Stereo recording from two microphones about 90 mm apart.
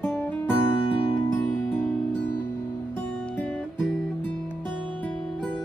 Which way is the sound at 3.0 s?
20° left (ahead or behind).